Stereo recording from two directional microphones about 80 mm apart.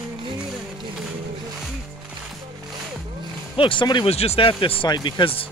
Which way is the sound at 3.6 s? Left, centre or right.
Left.